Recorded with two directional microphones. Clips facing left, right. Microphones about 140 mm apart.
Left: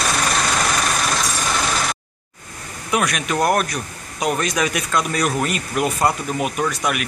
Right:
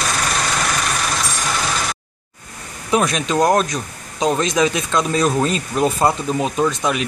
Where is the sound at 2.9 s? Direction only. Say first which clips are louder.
Right 3 dB; 25° right (ahead or behind).